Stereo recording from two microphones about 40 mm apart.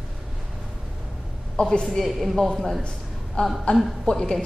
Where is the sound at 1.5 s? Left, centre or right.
Centre.